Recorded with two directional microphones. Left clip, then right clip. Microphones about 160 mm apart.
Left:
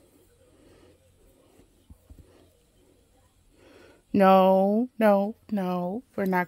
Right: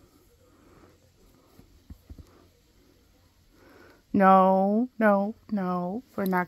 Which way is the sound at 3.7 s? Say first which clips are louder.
Left 1 dB; 50° left (ahead or behind).